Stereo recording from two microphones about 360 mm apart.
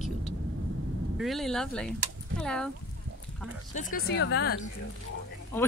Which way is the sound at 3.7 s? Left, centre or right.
Left.